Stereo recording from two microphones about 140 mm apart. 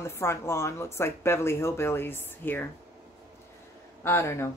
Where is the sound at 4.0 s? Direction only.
15° left (ahead or behind).